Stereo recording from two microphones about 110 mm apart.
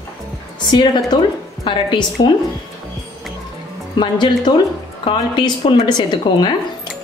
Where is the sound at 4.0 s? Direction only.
45° left (ahead or behind).